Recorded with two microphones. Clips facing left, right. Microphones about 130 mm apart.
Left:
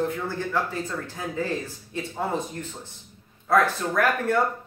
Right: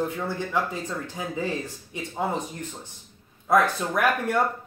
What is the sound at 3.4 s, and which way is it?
Speech, 15° right (ahead or behind).